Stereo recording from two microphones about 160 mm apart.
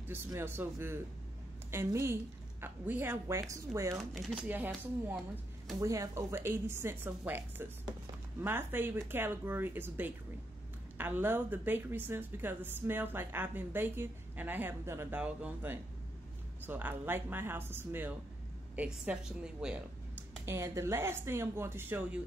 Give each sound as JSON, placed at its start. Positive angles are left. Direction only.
{"t": 0.1, "sound": "a woman's voice", "side_deg": -15}
{"t": 4.0, "sound": "a woman's voice", "side_deg": 0}
{"t": 4.5, "sound": "a woman's voice", "side_deg": -10}
{"t": 20.4, "sound": "a woman's voice", "side_deg": -15}